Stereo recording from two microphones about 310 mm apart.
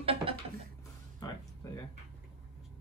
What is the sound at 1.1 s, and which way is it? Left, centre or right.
Music, centre.